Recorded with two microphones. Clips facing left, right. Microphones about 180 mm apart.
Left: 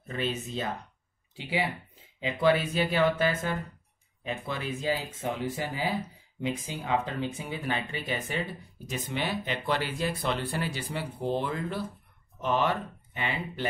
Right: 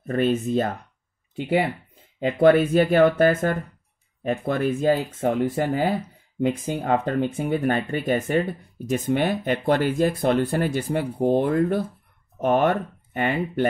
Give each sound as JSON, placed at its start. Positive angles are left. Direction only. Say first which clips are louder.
{"t": 0.0, "sound": "speech", "louder": "right 11 dB", "side_deg": -50}